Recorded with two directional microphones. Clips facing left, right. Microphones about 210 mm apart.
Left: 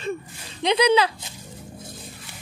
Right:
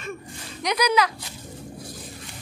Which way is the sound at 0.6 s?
25° left (ahead or behind).